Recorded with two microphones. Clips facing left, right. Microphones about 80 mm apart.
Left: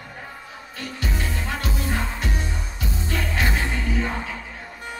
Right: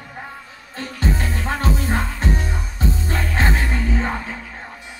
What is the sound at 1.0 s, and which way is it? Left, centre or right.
Music, right.